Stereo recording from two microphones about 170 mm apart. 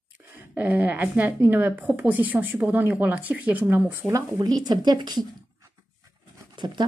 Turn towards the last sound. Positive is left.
turn(degrees=-25)  # may be behind; listen again after turning